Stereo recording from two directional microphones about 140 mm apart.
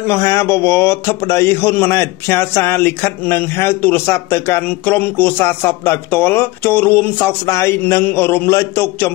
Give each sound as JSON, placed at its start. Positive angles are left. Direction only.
{"t": 0.0, "sound": "a man's voice", "side_deg": 20}